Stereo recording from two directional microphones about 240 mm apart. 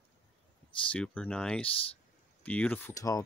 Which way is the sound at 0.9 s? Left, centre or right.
Centre.